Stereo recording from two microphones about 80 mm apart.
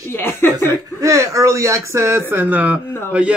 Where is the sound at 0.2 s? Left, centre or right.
Left.